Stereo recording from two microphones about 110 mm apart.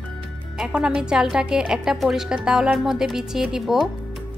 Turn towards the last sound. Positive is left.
turn(degrees=-5)  # may be behind; listen again after turning